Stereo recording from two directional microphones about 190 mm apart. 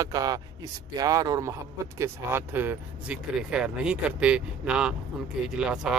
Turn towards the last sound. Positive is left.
turn(degrees=-5)  # may be behind; listen again after turning